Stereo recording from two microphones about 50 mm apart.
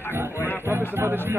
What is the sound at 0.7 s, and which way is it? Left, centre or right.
Music, right.